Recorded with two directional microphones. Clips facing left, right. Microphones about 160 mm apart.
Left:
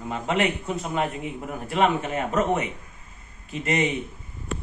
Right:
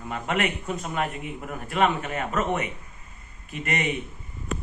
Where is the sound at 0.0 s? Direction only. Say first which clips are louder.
Left 3 dB; 25° left (ahead or behind).